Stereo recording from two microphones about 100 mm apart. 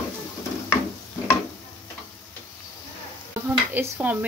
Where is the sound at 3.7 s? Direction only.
20° right (ahead or behind).